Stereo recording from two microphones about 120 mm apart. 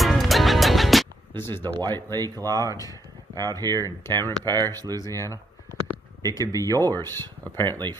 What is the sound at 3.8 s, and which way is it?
Speech, 20° left (ahead or behind).